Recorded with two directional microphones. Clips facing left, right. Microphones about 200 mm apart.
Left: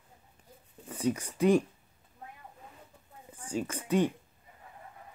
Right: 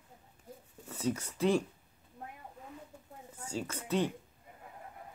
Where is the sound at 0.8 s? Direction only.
10° left (ahead or behind).